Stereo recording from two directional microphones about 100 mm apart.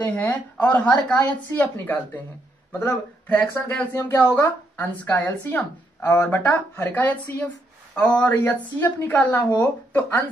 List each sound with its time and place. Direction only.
0.0 s a woman's voice: 15° left (ahead or behind)